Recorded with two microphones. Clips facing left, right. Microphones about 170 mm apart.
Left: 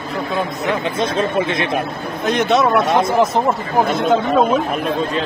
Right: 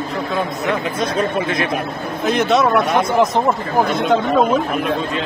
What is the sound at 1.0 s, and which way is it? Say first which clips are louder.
Speech: left 2 dB; 25° left (ahead or behind).